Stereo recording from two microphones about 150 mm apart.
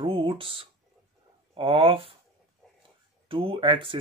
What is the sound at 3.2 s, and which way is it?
Speech, 35° right (ahead or behind).